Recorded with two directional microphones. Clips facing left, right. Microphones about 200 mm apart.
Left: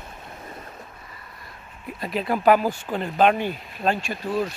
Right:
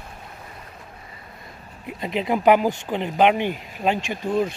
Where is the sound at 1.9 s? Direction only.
20° right (ahead or behind).